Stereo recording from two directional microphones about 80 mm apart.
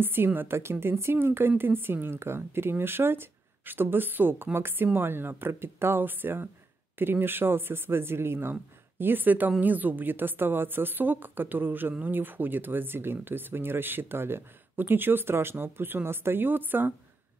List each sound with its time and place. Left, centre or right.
0.0 s a woman's voice: right